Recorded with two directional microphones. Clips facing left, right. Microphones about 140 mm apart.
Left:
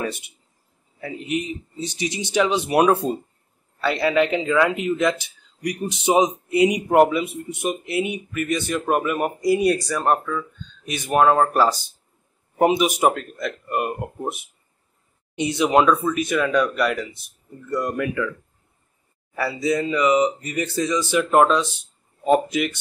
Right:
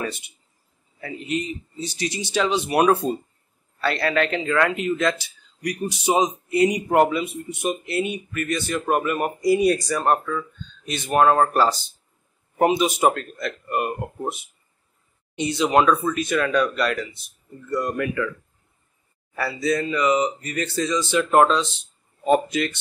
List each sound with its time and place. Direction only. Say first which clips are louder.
1.0 s speech: left 1 dB; 15° left (ahead or behind)
19.3 s speech: left 1 dB; 15° left (ahead or behind)